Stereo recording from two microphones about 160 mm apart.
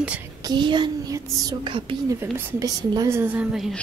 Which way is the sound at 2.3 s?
20° right (ahead or behind).